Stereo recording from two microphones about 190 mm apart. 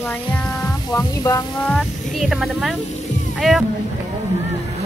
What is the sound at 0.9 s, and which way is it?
Speech, 20° left (ahead or behind).